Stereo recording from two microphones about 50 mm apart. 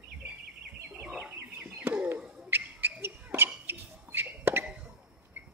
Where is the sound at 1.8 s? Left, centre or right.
Right.